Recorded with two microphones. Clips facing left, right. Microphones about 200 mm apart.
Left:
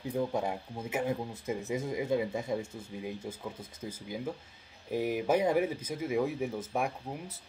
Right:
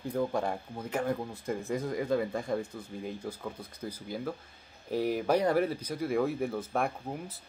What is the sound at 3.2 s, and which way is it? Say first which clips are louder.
Speech: right 2 dB; 25° left (ahead or behind).